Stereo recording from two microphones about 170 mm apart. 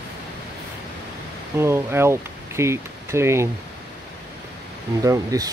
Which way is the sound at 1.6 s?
15° right (ahead or behind).